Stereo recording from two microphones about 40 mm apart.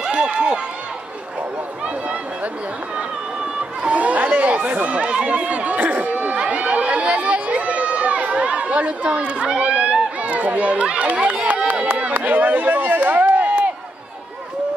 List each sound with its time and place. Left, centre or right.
0.0 s speech: right
3.8 s speech: right
4.9 s speech: right
6.3 s chatter: right
6.6 s speech: right
12.0 s chop: right